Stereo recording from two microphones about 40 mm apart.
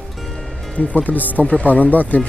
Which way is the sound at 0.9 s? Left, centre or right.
Left.